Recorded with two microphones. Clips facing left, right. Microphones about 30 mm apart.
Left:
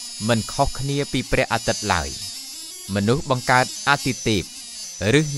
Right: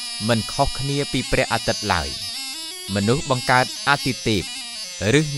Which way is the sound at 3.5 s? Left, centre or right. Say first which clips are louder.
Even; centre.